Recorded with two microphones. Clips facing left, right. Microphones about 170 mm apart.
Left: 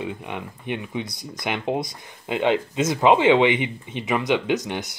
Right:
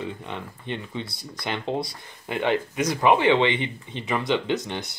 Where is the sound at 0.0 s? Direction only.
15° left (ahead or behind).